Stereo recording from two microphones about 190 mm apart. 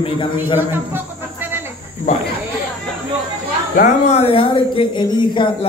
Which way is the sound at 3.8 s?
35° left (ahead or behind).